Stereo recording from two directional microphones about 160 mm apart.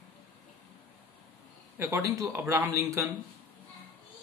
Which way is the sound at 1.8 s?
20° right (ahead or behind).